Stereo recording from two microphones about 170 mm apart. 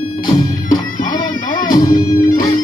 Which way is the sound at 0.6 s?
50° left (ahead or behind).